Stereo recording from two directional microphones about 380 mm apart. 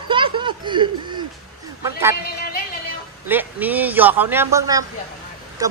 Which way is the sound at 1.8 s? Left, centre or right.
Centre.